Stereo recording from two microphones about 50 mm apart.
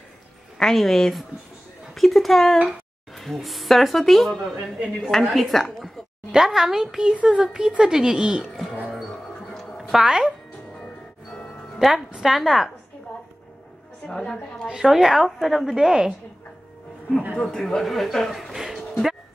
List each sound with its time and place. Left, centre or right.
0.6 s a woman's voice: centre
6.3 s a child's voice: centre
9.5 s music: centre
10.0 s a child's voice: centre
11.3 s a sound: centre
12.2 s a child's voice: centre
14.0 s a woman's voice: centre
14.7 s a child's voice: centre
17.4 s a woman's voice: centre
17.8 s a woman's voice: centre